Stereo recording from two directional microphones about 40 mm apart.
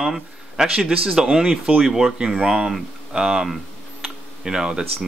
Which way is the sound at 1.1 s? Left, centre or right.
Centre.